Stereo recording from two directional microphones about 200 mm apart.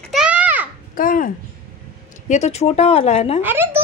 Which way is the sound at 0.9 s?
45° left (ahead or behind).